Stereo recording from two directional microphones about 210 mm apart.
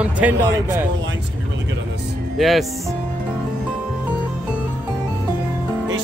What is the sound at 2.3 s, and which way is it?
Speech, centre (ahead or behind).